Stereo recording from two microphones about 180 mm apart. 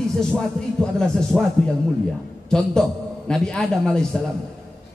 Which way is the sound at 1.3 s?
Centre (ahead or behind).